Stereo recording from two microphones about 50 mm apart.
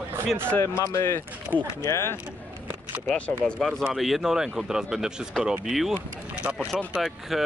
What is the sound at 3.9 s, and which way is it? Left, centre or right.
Speech, centre.